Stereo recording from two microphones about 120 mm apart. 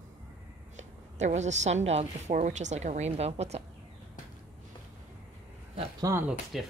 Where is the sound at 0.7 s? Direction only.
75° right (ahead or behind).